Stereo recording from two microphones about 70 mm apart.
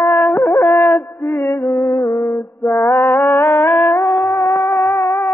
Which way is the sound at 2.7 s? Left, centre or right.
Left.